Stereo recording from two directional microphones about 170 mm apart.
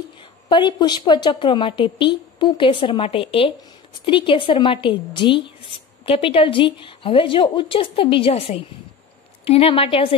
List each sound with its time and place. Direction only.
0.5 s a woman's voice: 25° left (ahead or behind)